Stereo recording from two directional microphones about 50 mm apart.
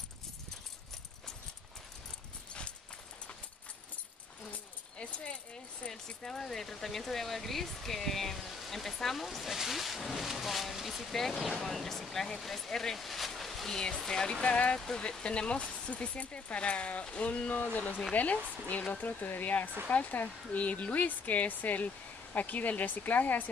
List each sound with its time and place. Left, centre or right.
4.5 s keys jangling: left
5.9 s speech: centre
13.7 s speech: centre; by 23.5 s left